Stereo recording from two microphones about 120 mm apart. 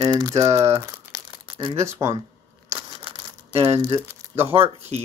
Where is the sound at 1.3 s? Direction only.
45° right (ahead or behind).